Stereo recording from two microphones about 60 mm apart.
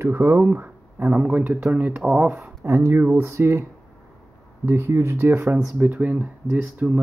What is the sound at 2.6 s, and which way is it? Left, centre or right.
Speech, right.